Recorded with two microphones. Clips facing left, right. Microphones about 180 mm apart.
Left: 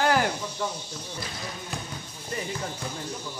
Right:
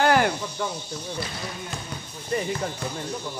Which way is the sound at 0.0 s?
65° right (ahead or behind).